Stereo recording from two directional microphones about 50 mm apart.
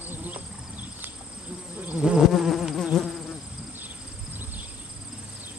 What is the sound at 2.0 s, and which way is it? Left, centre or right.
Insect, centre.